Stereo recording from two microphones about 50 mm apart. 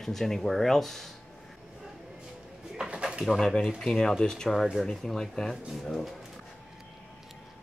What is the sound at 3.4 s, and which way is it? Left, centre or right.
Speech, centre.